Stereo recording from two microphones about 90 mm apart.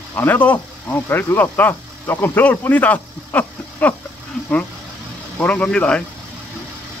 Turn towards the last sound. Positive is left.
turn(degrees=10)  # may be behind; listen again after turning